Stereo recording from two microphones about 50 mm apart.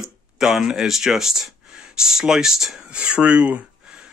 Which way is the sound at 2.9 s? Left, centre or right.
Right.